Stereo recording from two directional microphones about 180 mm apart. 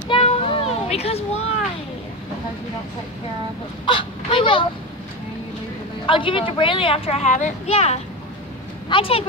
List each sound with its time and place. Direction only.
0.1 s a sound: 35° left (ahead or behind)
3.8 s speech: 30° left (ahead or behind)
6.0 s a woman's voice: 30° left (ahead or behind)